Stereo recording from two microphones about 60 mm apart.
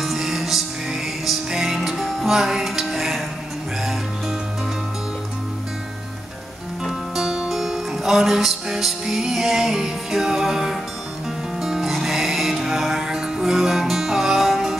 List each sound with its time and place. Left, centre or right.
0.0 s music: centre
6.8 s music: centre